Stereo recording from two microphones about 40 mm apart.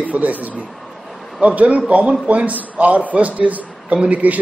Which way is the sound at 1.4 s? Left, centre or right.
Right.